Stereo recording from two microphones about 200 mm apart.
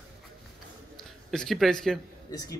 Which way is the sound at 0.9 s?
Centre (ahead or behind).